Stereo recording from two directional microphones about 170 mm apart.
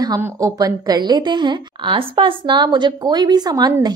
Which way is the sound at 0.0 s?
20° right (ahead or behind).